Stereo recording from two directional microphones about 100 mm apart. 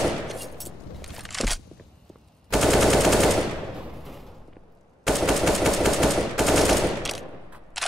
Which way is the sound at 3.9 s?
Centre (ahead or behind).